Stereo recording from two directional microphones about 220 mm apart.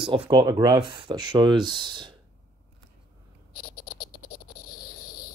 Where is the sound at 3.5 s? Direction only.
40° left (ahead or behind).